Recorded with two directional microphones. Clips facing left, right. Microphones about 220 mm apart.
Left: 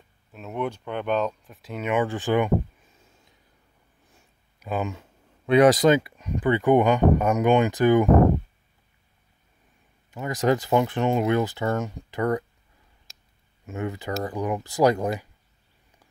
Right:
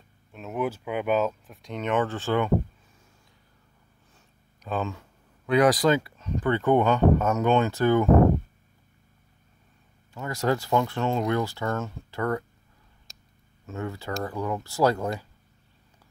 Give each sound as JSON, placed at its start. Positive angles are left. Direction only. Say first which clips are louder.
{"t": 0.3, "sound": "speech", "louder": "even", "side_deg": 0}
{"t": 4.1, "sound": "a sound", "louder": "even", "side_deg": 15}
{"t": 5.5, "sound": "speech", "louder": "left 4 dB", "side_deg": 25}
{"t": 10.1, "sound": "speech", "louder": "left 3 dB", "side_deg": 15}
{"t": 13.7, "sound": "speech", "louder": "left 3 dB", "side_deg": 15}